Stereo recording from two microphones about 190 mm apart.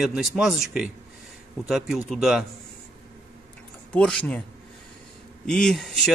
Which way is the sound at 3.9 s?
5° left (ahead or behind).